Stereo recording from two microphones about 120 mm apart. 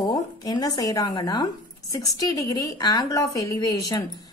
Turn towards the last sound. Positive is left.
turn(degrees=30)  # may be behind; listen again after turning